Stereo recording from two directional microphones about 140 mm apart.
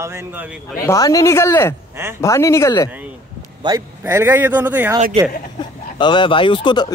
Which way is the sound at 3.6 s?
30° right (ahead or behind).